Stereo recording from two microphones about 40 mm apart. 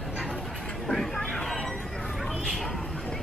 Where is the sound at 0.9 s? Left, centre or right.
Centre.